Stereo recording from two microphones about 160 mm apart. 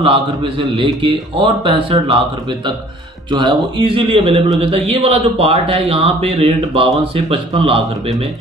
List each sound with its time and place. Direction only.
0.0 s a man's voice: 30° right (ahead or behind)
3.3 s a man's voice: 30° right (ahead or behind)